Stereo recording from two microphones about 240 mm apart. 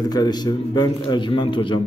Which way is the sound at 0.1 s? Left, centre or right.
Centre.